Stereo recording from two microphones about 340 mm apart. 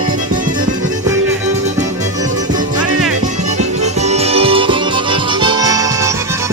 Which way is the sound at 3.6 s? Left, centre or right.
Centre.